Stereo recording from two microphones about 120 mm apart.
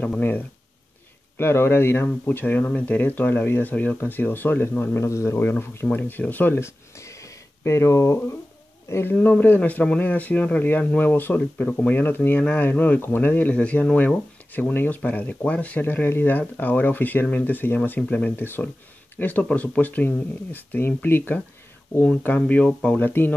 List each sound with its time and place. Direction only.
0.0 s speech: 10° left (ahead or behind)
1.4 s speech: 20° left (ahead or behind)
7.0 s a sound: 25° left (ahead or behind)
8.8 s speech: 20° left (ahead or behind)